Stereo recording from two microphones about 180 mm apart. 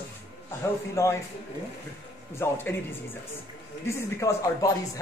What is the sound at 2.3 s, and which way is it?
Speech, 10° left (ahead or behind).